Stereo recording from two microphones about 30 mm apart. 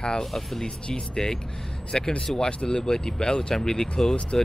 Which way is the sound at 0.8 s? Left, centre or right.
Left.